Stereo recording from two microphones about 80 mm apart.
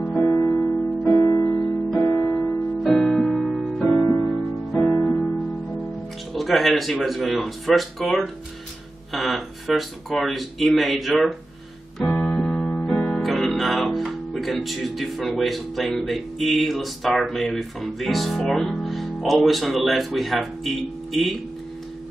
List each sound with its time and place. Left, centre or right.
0.2 s music: left
1.1 s music: left
2.9 s music: centre
4.9 s music: left
6.3 s speech: centre
12.0 s music: centre